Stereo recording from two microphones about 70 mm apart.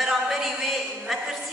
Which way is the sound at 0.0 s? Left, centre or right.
Centre.